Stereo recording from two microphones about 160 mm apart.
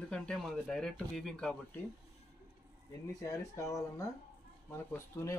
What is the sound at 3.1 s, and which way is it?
Speech, 20° left (ahead or behind).